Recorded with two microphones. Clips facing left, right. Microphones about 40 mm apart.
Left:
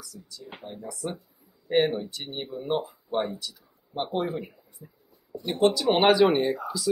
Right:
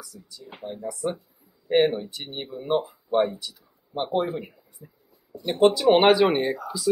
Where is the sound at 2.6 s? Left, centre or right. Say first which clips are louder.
Right 4 dB; centre.